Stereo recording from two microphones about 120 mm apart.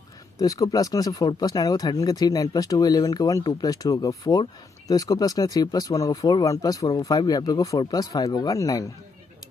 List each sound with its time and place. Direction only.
0.4 s speech: 30° left (ahead or behind)